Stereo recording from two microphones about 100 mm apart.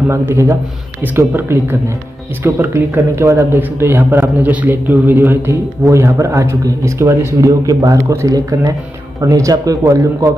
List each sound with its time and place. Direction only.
0.1 s speech: 30° right (ahead or behind)